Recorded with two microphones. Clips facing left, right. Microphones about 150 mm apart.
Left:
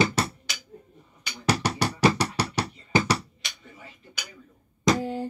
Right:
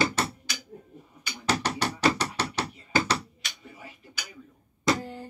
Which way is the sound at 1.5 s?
10° left (ahead or behind).